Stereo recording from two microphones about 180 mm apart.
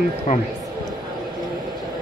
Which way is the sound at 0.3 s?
45° left (ahead or behind).